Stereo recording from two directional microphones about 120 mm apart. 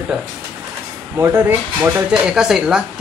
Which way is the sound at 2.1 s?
5° right (ahead or behind).